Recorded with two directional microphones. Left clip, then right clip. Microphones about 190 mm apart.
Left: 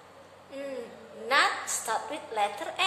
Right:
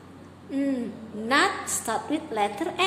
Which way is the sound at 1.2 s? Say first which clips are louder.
Right 2 dB; 30° right (ahead or behind).